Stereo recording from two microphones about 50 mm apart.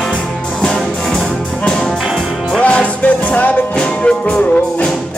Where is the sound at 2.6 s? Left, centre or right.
Left.